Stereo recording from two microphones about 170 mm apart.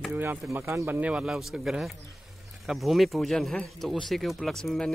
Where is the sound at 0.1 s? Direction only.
10° right (ahead or behind).